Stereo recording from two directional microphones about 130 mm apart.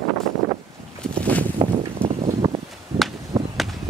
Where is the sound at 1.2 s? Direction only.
10° left (ahead or behind).